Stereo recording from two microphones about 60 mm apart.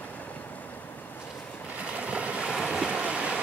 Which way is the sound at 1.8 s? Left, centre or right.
Right.